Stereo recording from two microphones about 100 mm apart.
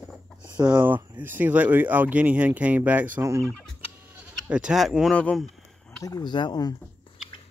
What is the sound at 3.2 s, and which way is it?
Turkey, 30° right (ahead or behind).